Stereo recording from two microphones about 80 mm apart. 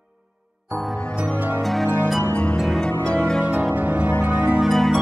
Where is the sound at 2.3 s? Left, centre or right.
Centre.